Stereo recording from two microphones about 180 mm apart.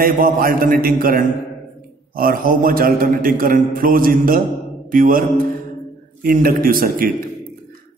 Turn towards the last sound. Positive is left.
turn(degrees=-50)  # may be behind; listen again after turning